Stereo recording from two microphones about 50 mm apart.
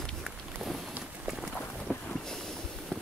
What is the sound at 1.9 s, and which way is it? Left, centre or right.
Boat, centre.